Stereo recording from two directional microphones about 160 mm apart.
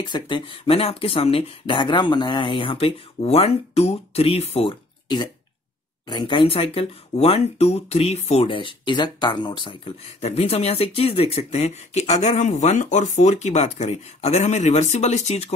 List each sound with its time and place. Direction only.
0.0 s speech: 30° left (ahead or behind)